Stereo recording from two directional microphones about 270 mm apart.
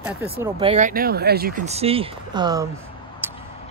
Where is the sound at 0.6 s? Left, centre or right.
Right.